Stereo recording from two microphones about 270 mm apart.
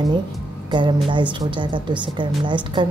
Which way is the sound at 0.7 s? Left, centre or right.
Centre.